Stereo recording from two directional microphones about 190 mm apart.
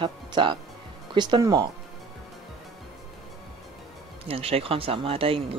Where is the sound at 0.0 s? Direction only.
25° right (ahead or behind).